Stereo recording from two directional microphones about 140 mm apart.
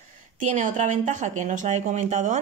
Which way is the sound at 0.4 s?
65° right (ahead or behind).